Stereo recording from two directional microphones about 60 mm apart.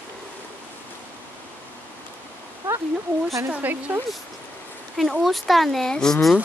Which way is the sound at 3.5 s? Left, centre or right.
Right.